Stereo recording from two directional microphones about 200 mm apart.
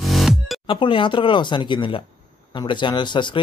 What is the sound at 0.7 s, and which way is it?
Speech, 25° left (ahead or behind).